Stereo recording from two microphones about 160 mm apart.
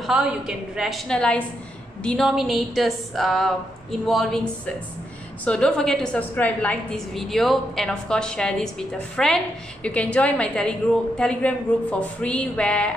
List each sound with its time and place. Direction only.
0.0 s a woman's voice: 5° right (ahead or behind)